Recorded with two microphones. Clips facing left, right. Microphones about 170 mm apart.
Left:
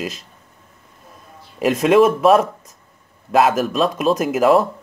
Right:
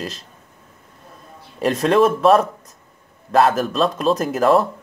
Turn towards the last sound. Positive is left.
turn(degrees=5)  # may be behind; listen again after turning